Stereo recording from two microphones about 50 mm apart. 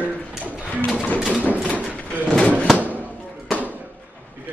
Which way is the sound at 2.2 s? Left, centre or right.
Left.